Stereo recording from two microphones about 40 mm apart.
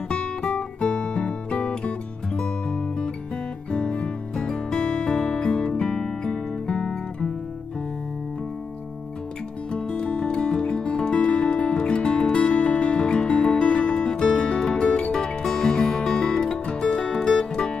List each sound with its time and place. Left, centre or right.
0.1 s guitar: left
0.7 s music: left
3.7 s music: left
9.7 s music: left